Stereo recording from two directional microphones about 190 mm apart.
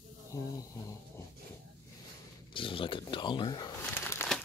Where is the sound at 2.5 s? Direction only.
25° left (ahead or behind).